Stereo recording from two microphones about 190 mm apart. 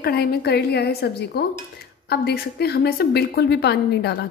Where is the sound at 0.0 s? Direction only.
55° left (ahead or behind).